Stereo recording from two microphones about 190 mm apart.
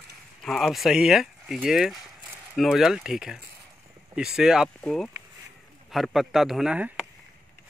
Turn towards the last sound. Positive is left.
turn(degrees=-5)  # may be behind; listen again after turning